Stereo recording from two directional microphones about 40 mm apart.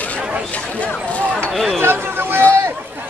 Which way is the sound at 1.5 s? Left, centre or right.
Centre.